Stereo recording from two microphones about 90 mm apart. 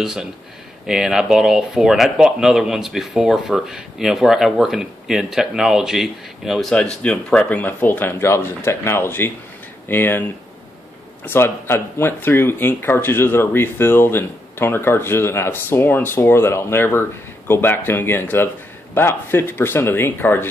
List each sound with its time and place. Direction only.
0.0 s speech: 5° right (ahead or behind); by 10.2 s 25° left (ahead or behind)
11.2 s speech: 25° left (ahead or behind)